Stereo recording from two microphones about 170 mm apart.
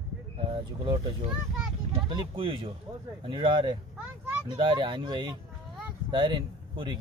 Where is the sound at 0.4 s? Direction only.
35° right (ahead or behind).